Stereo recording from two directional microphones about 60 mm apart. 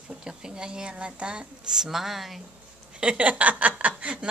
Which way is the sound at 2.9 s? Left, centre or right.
Right.